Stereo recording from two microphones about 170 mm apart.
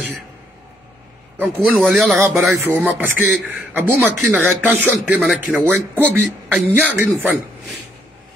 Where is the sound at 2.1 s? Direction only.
15° right (ahead or behind).